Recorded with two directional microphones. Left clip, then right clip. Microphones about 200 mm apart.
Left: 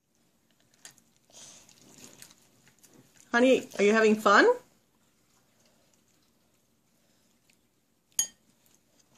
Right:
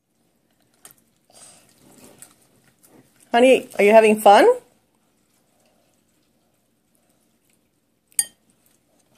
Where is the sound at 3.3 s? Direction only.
40° left (ahead or behind).